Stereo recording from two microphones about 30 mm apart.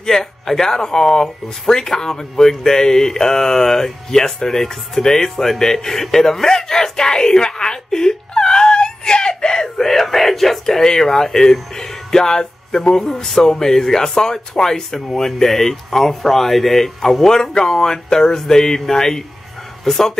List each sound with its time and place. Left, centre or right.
0.2 s speech: centre
9.8 s speech: centre